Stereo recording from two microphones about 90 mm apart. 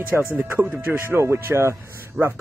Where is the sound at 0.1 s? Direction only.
20° right (ahead or behind).